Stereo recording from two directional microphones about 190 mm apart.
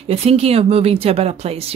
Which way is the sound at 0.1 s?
30° right (ahead or behind).